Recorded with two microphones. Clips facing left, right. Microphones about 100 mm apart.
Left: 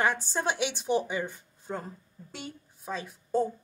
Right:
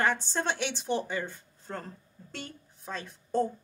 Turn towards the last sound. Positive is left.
turn(degrees=5)  # may be behind; listen again after turning